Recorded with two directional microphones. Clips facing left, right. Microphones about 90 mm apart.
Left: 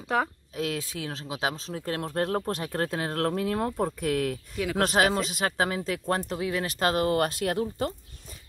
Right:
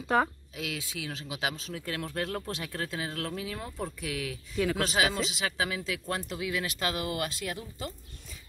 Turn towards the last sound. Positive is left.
turn(degrees=55)  # may be behind; listen again after turning